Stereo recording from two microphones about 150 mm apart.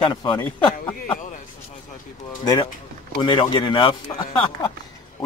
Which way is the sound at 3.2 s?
30° left (ahead or behind).